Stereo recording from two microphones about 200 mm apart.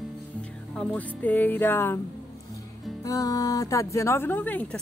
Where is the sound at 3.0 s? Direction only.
15° left (ahead or behind).